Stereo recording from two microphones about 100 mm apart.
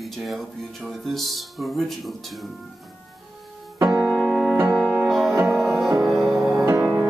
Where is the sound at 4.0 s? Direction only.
10° right (ahead or behind).